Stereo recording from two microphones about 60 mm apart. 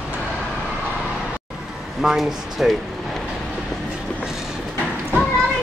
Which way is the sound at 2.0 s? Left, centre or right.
Centre.